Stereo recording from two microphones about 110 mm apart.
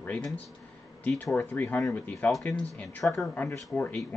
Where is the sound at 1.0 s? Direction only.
15° left (ahead or behind).